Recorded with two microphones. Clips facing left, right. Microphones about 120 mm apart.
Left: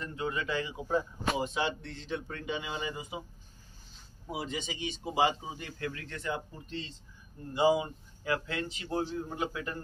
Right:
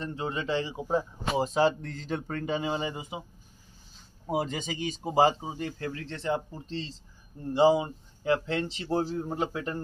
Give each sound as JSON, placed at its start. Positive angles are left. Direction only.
{"t": 0.0, "sound": "a man's voice", "side_deg": -30}
{"t": 4.3, "sound": "speech", "side_deg": -45}